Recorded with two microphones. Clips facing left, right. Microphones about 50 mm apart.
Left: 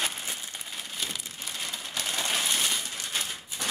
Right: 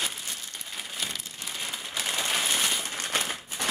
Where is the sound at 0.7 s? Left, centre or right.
Centre.